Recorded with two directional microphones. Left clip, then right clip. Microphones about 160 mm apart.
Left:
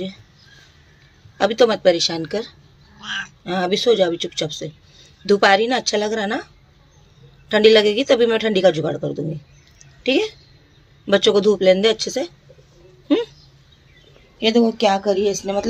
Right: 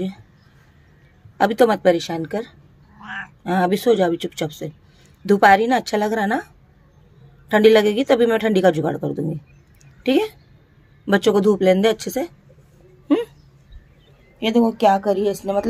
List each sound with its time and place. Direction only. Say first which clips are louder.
1.4 s speech: left 1 dB; 20° right (ahead or behind)
3.4 s speech: even; 25° right (ahead or behind)
14.4 s speech: even; centre (ahead or behind)